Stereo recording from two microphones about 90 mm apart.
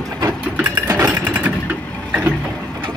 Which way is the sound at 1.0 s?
15° right (ahead or behind).